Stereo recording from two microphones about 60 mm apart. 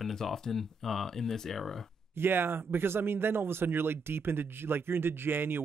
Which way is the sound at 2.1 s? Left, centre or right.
Right.